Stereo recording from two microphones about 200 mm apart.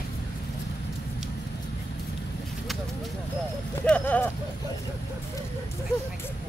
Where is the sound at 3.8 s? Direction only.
5° left (ahead or behind).